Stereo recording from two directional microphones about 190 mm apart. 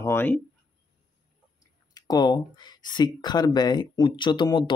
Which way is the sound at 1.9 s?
20° left (ahead or behind).